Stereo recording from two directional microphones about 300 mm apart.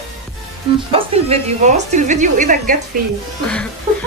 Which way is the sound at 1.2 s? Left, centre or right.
Right.